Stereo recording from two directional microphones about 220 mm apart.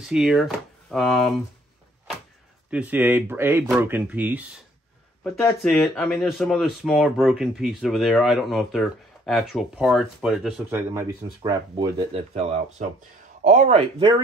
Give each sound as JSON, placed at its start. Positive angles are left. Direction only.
{"t": 0.0, "sound": "speech", "side_deg": -5}
{"t": 2.7, "sound": "speech", "side_deg": -5}
{"t": 5.2, "sound": "speech", "side_deg": 5}
{"t": 11.0, "sound": "speech", "side_deg": -15}